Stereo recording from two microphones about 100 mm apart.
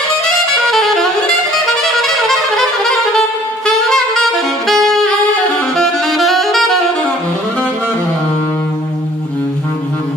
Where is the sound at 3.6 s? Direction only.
5° left (ahead or behind).